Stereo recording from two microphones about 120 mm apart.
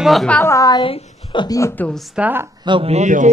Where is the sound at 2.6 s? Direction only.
45° right (ahead or behind).